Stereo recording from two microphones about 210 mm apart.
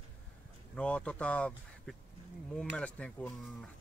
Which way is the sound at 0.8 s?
5° left (ahead or behind).